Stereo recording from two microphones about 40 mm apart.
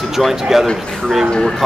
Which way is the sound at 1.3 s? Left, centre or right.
Left.